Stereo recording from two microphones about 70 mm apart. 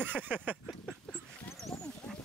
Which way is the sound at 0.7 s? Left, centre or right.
Centre.